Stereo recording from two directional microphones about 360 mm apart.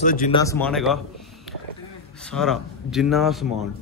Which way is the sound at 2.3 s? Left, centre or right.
Centre.